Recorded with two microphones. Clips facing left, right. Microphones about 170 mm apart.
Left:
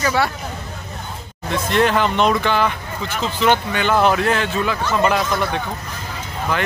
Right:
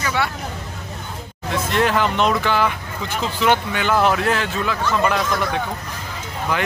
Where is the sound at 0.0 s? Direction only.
40° left (ahead or behind).